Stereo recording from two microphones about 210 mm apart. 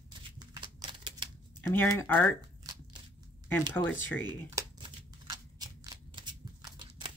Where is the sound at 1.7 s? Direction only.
10° left (ahead or behind).